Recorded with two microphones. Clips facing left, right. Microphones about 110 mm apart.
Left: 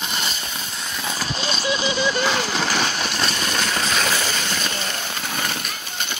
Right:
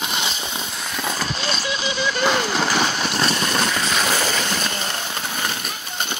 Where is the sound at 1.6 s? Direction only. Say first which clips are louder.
Left 3 dB; 35° left (ahead or behind).